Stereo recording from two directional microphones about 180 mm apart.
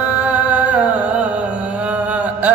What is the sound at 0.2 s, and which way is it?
Music, 5° right (ahead or behind).